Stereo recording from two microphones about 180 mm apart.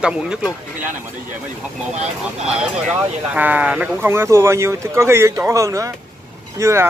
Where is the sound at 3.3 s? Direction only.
10° right (ahead or behind).